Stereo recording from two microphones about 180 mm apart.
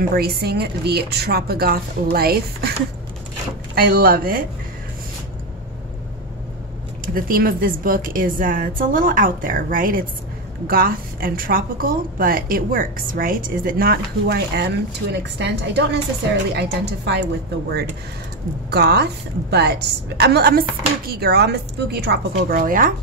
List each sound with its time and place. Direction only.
0.1 s speech: 60° right (ahead or behind)
3.7 s speech: 55° right (ahead or behind)
7.2 s a woman's voice: 55° right (ahead or behind)